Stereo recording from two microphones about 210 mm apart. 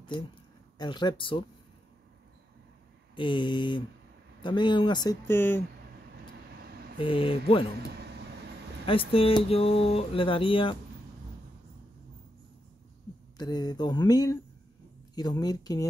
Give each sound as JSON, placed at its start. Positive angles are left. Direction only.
{"t": 0.7, "sound": "speech", "side_deg": 20}
{"t": 3.2, "sound": "speech", "side_deg": 25}
{"t": 6.7, "sound": "vehicle", "side_deg": -50}
{"t": 7.0, "sound": "speech", "side_deg": 25}
{"t": 8.8, "sound": "speech", "side_deg": 25}
{"t": 13.4, "sound": "speech", "side_deg": 20}